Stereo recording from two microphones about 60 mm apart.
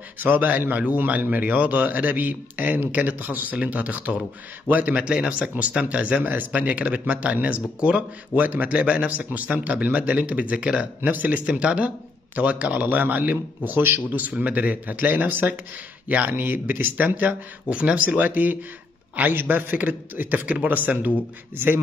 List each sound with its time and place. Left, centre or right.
0.2 s speech: right
11.4 s speech: centre